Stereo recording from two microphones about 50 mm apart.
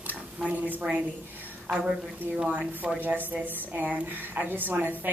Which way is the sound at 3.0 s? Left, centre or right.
Right.